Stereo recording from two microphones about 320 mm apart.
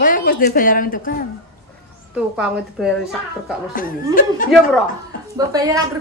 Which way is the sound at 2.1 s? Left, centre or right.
Centre.